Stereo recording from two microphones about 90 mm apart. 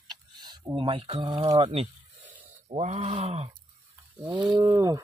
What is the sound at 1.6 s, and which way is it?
Speech, 90° right.